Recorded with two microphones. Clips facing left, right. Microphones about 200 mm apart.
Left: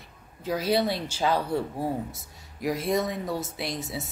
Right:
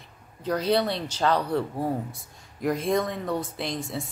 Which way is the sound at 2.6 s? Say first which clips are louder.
Right 1 dB; 5° left (ahead or behind).